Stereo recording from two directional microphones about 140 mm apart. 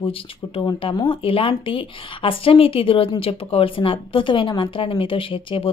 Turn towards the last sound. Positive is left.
turn(degrees=40)  # may be behind; listen again after turning